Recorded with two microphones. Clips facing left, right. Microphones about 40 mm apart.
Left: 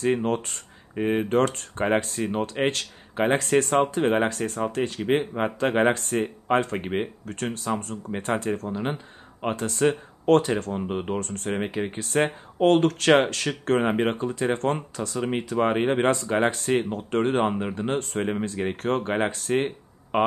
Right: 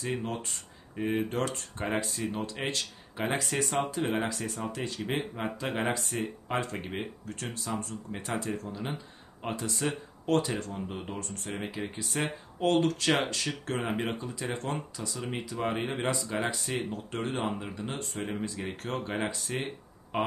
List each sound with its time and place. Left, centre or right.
0.0 s speech: left
0.9 s speech: left
3.8 s speech: left
5.0 s speech: left
5.9 s speech: left
11.2 s speech: left
11.5 s speech: left